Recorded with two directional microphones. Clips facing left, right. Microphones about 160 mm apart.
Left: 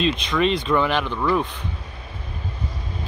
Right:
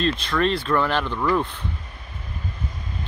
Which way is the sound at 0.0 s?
15° left (ahead or behind).